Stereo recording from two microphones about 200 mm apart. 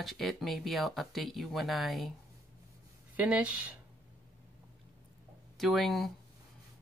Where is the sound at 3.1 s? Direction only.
5° right (ahead or behind).